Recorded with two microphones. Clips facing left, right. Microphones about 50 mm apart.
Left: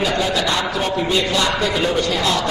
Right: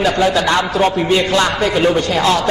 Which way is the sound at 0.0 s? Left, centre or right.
Right.